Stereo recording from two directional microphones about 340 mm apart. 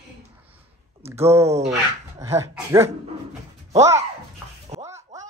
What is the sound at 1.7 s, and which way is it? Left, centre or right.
Speech, centre.